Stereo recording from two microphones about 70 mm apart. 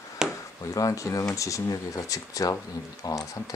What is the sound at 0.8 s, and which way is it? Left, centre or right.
Speech, left.